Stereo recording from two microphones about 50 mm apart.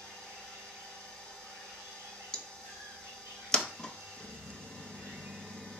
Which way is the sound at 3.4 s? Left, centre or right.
Centre.